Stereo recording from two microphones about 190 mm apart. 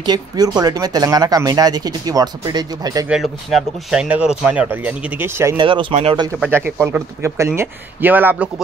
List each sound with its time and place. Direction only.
0.0 s speech: 20° right (ahead or behind)
3.1 s speech: centre (ahead or behind)
5.6 s speech: 25° right (ahead or behind)
6.4 s speech: 10° right (ahead or behind)